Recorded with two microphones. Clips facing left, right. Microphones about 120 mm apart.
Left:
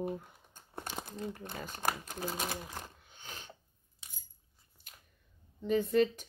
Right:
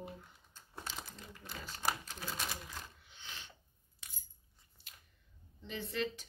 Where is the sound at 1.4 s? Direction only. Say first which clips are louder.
Even; 50° left (ahead or behind).